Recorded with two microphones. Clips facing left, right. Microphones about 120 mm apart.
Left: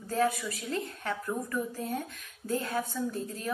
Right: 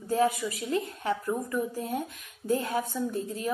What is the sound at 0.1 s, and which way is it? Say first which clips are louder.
A woman's voice: right 3 dB; 20° right (ahead or behind).